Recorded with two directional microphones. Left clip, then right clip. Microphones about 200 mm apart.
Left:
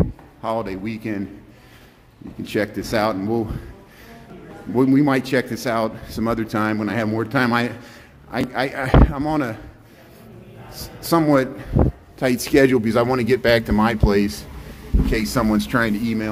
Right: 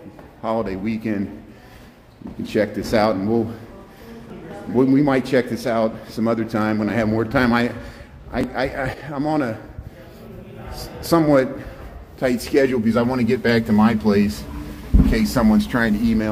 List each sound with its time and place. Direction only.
0.4 s speech: 20° left (ahead or behind)
2.4 s a man's voice: 25° left (ahead or behind)
4.7 s a man's voice: 25° left (ahead or behind)
11.0 s a man's voice: 20° left (ahead or behind)
12.2 s a man's voice: 30° left (ahead or behind); by 16.3 s 10° left (ahead or behind)